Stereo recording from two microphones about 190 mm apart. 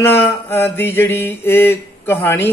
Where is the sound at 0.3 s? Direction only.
10° left (ahead or behind).